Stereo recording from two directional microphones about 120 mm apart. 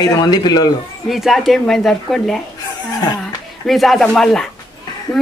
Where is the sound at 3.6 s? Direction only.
Centre (ahead or behind).